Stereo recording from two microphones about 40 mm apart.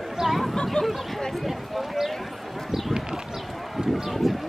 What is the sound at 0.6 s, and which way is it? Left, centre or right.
Speech, centre.